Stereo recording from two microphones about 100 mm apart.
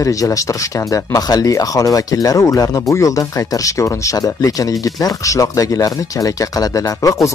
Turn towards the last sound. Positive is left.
turn(degrees=35)  # may be behind; listen again after turning